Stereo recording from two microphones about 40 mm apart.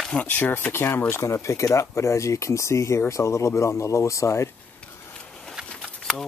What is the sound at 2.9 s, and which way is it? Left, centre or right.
Speech, left.